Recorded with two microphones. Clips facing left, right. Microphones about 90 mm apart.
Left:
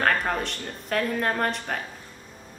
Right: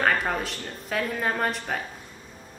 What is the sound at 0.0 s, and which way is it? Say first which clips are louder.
A woman's voice: even; 5° right (ahead or behind).